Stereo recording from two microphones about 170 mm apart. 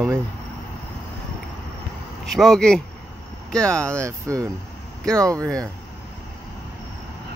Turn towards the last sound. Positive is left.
turn(degrees=-20)  # may be behind; listen again after turning